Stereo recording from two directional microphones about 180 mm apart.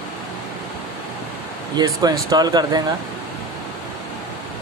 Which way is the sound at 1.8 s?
20° right (ahead or behind).